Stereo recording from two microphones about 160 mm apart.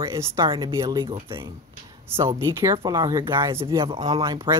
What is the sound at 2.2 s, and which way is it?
Speech, 15° right (ahead or behind).